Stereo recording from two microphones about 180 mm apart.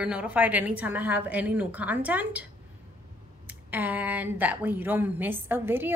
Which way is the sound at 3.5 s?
10° right (ahead or behind).